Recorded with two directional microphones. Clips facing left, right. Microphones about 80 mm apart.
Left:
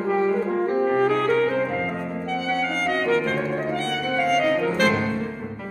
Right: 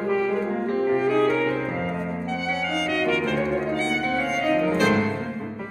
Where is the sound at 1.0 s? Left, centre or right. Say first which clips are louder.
Even; left.